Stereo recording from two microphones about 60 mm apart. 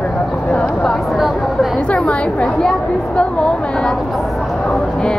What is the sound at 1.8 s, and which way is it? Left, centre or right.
Chatter, centre.